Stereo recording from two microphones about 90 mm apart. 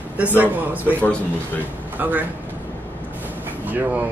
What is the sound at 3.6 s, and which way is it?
Speech, 20° right (ahead or behind).